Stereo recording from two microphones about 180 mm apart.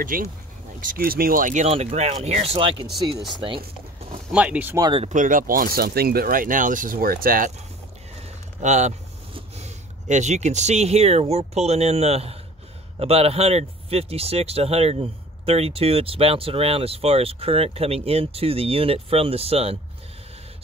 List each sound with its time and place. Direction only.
0.0 s speech: 50° right (ahead or behind); by 2.9 s 30° right (ahead or behind)
4.3 s speech: 5° right (ahead or behind)
4.7 s speech: 25° right (ahead or behind)
5.0 s speech: 45° right (ahead or behind)
8.2 s speech: 40° right (ahead or behind)